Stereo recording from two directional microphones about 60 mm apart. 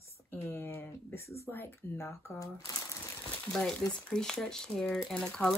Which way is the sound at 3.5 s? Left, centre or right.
Centre.